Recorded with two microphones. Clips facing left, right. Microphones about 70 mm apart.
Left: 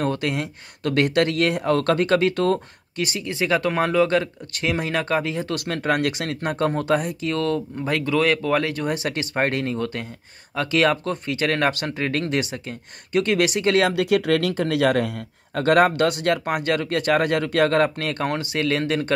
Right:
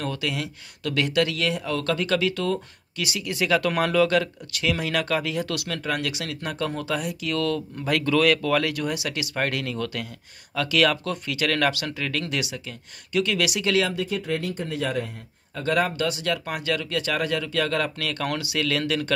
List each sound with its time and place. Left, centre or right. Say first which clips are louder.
0.0 s speech: left 5 dB; left
4.6 s speech: left 1 dB; left
8.8 s speech: left 3 dB; left
13.8 s speech: left 8 dB; left